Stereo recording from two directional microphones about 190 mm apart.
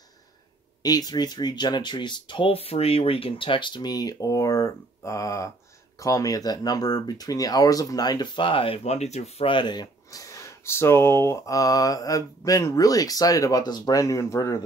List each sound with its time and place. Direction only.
0.8 s speech: 20° left (ahead or behind)